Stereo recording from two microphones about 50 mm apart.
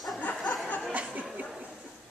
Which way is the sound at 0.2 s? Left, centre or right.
Left.